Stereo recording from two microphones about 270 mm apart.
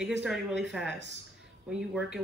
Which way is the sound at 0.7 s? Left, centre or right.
Centre.